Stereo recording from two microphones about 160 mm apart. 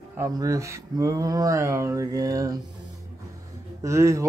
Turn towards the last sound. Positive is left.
turn(degrees=-20)  # may be behind; listen again after turning